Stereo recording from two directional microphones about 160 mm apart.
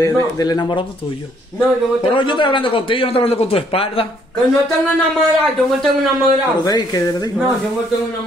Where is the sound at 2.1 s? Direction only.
30° left (ahead or behind).